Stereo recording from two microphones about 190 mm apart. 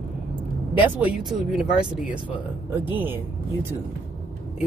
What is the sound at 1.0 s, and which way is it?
Speech, 5° right (ahead or behind).